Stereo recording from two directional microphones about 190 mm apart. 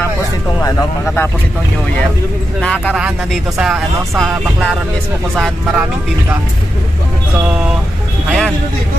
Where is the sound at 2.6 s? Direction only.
5° left (ahead or behind).